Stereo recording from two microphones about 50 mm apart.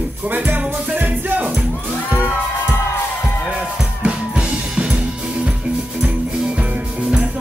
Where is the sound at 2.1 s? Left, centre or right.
Left.